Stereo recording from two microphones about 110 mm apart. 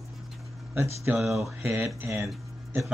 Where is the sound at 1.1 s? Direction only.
5° right (ahead or behind).